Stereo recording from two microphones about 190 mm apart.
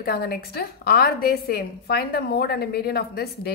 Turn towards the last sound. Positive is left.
turn(degrees=55)  # may be behind; listen again after turning